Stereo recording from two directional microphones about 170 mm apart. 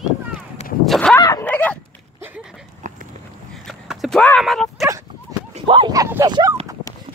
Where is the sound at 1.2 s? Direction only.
15° left (ahead or behind).